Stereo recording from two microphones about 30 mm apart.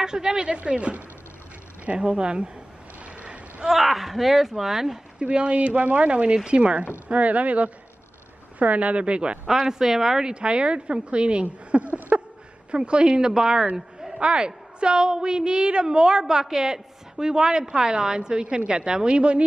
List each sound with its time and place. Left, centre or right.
0.0 s a woman's voice: right
0.7 s speech: right
2.0 s speech: right
3.6 s speech: centre
5.2 s speech: right
5.6 s speech: right
6.8 s speech: right
9.5 s speech: centre
10.3 s speech: right
12.7 s speech: right
13.3 s a woman's voice: centre
13.7 s a sound: centre
14.2 s a woman's voice: right